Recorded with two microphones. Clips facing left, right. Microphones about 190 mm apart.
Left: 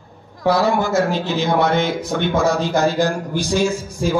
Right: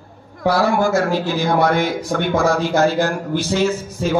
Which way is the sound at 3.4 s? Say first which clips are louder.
Even; 15° left (ahead or behind).